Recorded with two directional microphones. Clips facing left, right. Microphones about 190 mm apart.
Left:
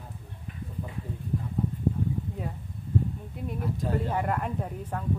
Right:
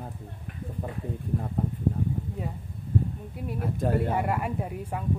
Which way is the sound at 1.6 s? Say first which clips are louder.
Even; 55° right (ahead or behind).